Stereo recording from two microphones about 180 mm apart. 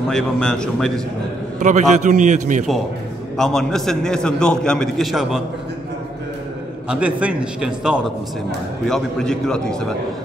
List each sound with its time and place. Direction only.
0.1 s a man's voice: 5° left (ahead or behind)
1.6 s a man's voice: 40° right (ahead or behind)
3.3 s a man's voice: 5° left (ahead or behind)
6.9 s a man's voice: 5° right (ahead or behind)